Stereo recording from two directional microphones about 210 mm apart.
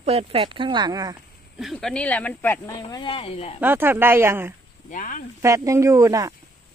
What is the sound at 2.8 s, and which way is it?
Speech, 25° left (ahead or behind).